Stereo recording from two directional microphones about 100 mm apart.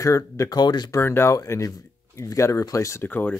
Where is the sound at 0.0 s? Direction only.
35° left (ahead or behind).